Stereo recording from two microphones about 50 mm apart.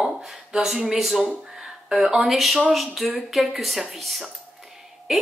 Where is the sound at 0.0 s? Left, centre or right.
Centre.